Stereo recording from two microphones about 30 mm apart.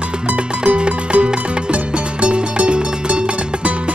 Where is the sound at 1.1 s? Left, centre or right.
Right.